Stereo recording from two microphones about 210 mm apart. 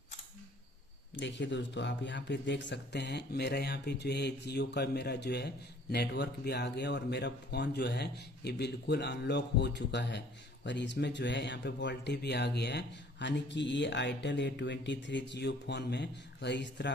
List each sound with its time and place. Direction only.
1.2 s speech: 60° left (ahead or behind)